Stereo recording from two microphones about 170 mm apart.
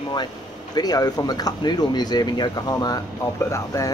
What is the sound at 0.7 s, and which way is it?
Speech, 25° left (ahead or behind).